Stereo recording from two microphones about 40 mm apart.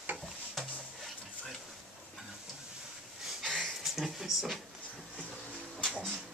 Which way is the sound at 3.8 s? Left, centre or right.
Centre.